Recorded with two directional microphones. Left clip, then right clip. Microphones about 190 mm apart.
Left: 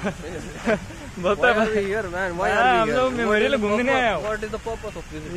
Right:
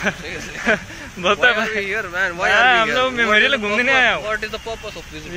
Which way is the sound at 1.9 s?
20° left (ahead or behind).